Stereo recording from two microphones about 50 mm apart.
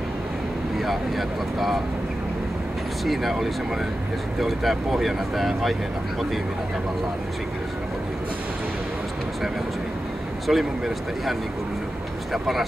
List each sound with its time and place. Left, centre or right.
0.7 s speech: centre
3.1 s speech: centre
10.4 s speech: centre
12.3 s speech: centre